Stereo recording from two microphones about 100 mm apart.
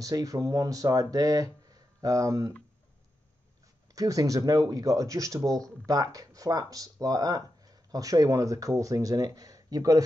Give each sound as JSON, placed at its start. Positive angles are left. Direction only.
{"t": 0.0, "sound": "speech", "side_deg": -35}
{"t": 3.9, "sound": "speech", "side_deg": -35}